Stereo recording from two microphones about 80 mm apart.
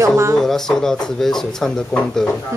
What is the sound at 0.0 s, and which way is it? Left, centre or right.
Speech, right.